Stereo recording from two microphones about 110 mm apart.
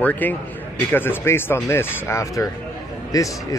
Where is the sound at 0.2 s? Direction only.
15° left (ahead or behind).